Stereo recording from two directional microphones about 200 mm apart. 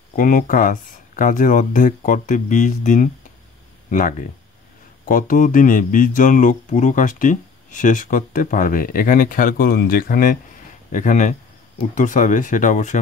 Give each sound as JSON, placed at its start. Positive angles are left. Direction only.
{"t": 0.1, "sound": "speech", "side_deg": 40}
{"t": 5.0, "sound": "speech", "side_deg": 45}